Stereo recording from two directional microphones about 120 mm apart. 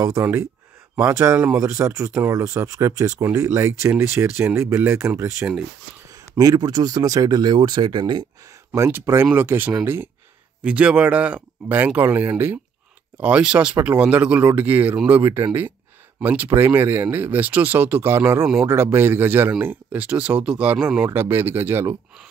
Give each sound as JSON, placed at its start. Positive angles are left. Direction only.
{"t": 0.0, "sound": "speech", "side_deg": -25}
{"t": 8.7, "sound": "speech", "side_deg": -25}
{"t": 21.1, "sound": "speech", "side_deg": -15}